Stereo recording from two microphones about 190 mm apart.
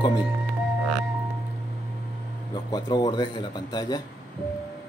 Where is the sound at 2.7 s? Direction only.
20° left (ahead or behind).